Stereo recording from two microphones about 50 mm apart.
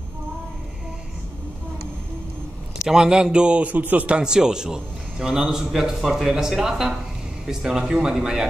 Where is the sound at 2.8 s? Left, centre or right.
Centre; by 4.2 s right.